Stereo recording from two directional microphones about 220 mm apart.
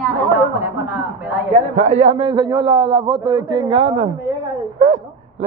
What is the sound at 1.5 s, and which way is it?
A man's voice, 30° right (ahead or behind).